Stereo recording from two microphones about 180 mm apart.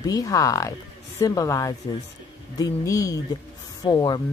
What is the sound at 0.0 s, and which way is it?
Speech, 20° left (ahead or behind).